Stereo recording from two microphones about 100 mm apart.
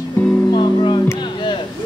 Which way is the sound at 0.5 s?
50° left (ahead or behind).